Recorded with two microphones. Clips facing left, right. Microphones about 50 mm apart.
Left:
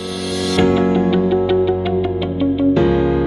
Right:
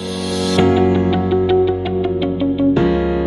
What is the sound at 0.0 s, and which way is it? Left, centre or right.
Music, centre.